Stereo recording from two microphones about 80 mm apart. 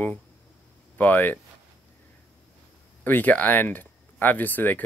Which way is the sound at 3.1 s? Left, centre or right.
Left.